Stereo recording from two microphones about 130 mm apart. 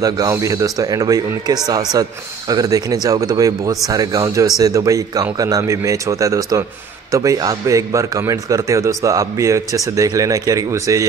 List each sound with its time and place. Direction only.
0.0 s a man's voice: 25° right (ahead or behind)